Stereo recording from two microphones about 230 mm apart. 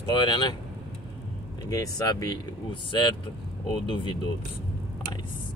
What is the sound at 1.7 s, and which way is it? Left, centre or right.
Speech, centre.